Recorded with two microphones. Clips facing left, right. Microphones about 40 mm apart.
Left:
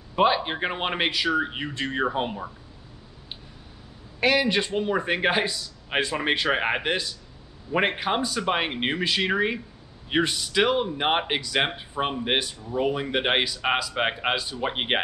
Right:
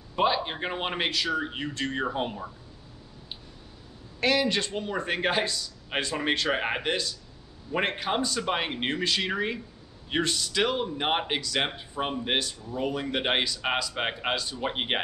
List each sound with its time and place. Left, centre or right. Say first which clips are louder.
0.1 s speech: left 4 dB; centre
4.2 s speech: left 3 dB; centre